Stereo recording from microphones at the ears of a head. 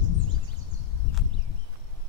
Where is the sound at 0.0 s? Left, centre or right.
Left.